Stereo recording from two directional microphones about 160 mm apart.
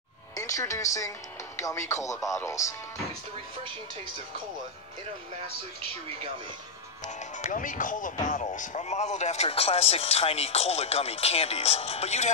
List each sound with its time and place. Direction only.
0.4 s speech: 20° left (ahead or behind)
7.4 s speech: 55° left (ahead or behind)